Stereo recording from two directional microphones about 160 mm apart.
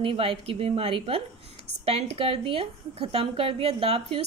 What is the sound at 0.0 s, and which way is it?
Speech, 35° right (ahead or behind).